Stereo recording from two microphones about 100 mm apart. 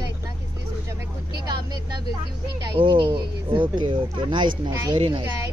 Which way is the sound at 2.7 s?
60° right (ahead or behind).